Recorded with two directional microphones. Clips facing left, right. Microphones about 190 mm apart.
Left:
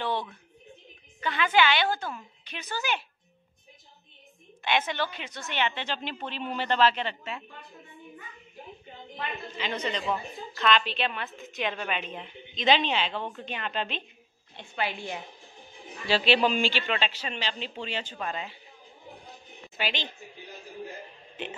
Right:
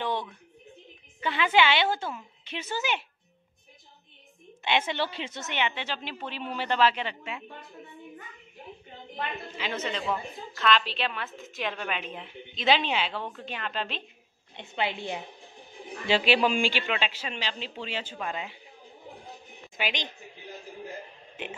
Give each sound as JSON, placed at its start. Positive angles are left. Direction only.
{"t": 1.2, "sound": "a woman's voice", "side_deg": -25}
{"t": 4.6, "sound": "a woman's voice", "side_deg": -25}
{"t": 9.6, "sound": "a woman's voice", "side_deg": -5}
{"t": 14.6, "sound": "a woman's voice", "side_deg": -20}
{"t": 16.1, "sound": "a woman's voice", "side_deg": -10}
{"t": 19.8, "sound": "a woman's voice", "side_deg": -15}
{"t": 21.4, "sound": "speech", "side_deg": -10}